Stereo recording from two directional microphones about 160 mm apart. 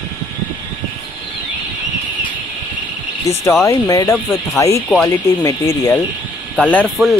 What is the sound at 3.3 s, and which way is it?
Speech, 20° left (ahead or behind).